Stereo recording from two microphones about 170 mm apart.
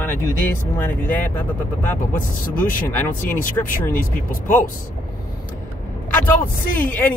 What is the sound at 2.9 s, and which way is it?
Speech, 10° left (ahead or behind).